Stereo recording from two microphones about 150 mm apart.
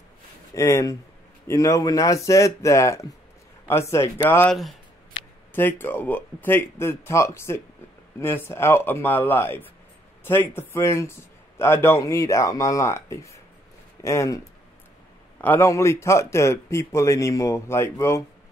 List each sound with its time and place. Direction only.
0.6 s a man's voice: 20° left (ahead or behind)
15.4 s a man's voice: 15° left (ahead or behind)